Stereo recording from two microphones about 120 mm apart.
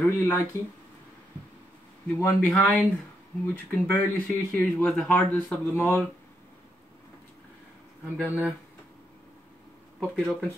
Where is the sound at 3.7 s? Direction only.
15° left (ahead or behind).